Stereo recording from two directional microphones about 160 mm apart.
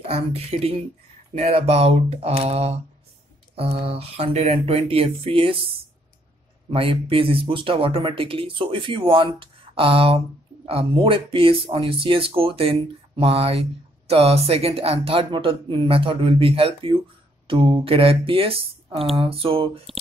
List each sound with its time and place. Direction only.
0.1 s speech: 40° right (ahead or behind)
6.7 s speech: 35° right (ahead or behind)